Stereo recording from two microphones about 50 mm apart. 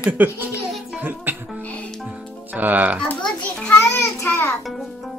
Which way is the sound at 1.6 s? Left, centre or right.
Left.